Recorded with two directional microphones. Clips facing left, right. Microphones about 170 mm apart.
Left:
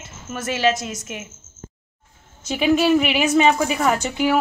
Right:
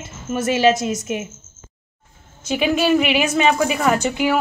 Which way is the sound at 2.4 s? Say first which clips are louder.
Left 1 dB; 10° right (ahead or behind).